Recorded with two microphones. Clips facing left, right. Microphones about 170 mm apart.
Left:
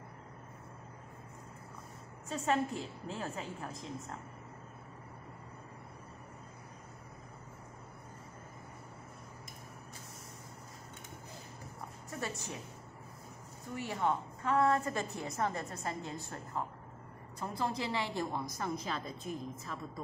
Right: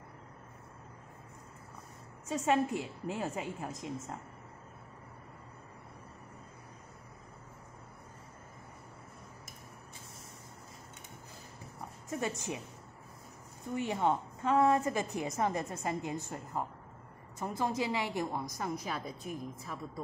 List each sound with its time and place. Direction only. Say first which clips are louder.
2.2 s a woman's voice: right 3 dB; 15° right (ahead or behind)
12.1 s a woman's voice: right 5 dB; 20° right (ahead or behind)
13.7 s a woman's voice: right 3 dB; 20° right (ahead or behind)
17.4 s a woman's voice: right 3 dB; 20° right (ahead or behind)